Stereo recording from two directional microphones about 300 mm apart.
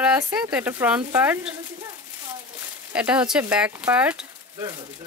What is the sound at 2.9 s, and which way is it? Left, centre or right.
Speech, centre.